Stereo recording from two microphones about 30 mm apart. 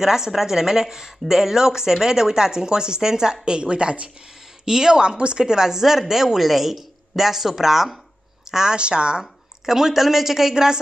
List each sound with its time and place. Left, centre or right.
0.0 s a woman's voice: centre
3.4 s a woman's voice: right
4.6 s speech: right
5.1 s a woman's voice: right
5.4 s a woman's voice: right
8.7 s a woman's voice: right
9.7 s a woman's voice: centre
10.5 s speech: right